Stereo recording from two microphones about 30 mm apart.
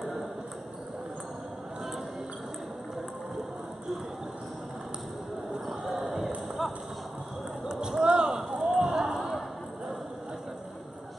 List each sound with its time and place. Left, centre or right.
0.0 s ping: centre
5.5 s basketball bounce: centre
7.6 s a sound: right
8.5 s run: centre
8.9 s basketball bounce: centre